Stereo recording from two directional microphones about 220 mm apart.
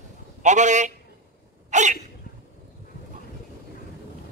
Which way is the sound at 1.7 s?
35° right (ahead or behind).